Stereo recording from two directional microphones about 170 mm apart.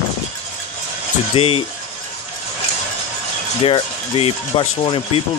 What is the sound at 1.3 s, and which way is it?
Speech, 35° left (ahead or behind).